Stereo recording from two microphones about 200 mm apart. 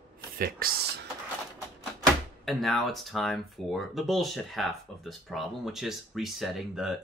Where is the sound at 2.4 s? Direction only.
Centre (ahead or behind).